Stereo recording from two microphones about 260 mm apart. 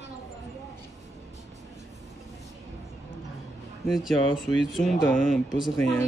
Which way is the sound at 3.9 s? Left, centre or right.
Centre.